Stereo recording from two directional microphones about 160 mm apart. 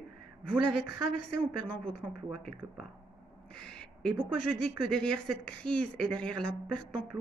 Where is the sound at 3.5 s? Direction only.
5° left (ahead or behind).